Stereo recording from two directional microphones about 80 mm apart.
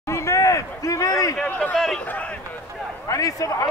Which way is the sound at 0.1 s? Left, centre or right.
Left.